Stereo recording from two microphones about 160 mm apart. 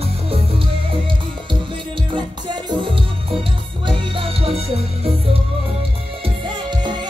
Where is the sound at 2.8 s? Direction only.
35° right (ahead or behind).